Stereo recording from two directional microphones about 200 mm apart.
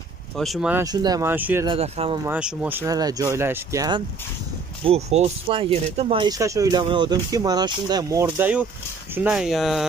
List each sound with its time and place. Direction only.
0.4 s speech: centre (ahead or behind)
0.8 s speech: 20° right (ahead or behind)
1.7 s speech: 30° right (ahead or behind)
2.2 s speech: 5° right (ahead or behind)
4.8 s speech: 30° right (ahead or behind); by 9.8 s centre (ahead or behind)